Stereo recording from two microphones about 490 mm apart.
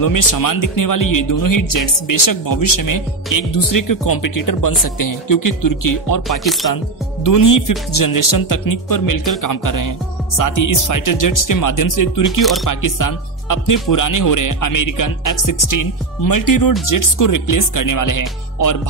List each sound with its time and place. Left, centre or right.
0.0 s speech: left
6.2 s music: centre
7.9 s speech: left
12.4 s music: centre
12.6 s speech: left